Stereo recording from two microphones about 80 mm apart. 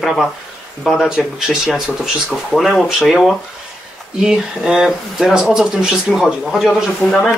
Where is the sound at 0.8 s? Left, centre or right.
Centre.